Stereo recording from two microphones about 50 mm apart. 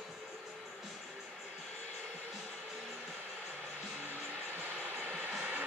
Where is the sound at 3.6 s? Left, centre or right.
Right.